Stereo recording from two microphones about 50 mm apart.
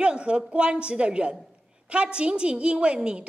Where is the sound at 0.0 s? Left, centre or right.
Centre.